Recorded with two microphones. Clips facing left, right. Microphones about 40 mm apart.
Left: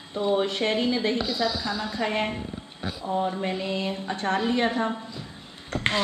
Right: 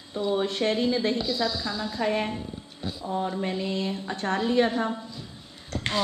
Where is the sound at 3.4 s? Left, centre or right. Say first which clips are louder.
Even; left.